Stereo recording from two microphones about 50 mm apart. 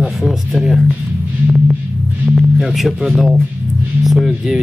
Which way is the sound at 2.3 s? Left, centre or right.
Centre.